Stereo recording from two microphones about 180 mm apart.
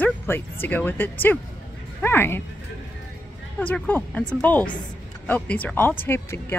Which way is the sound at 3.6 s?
10° left (ahead or behind).